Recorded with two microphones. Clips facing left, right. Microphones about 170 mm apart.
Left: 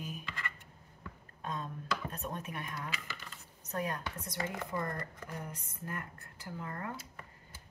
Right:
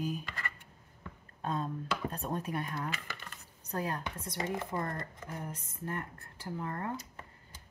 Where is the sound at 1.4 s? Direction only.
35° right (ahead or behind).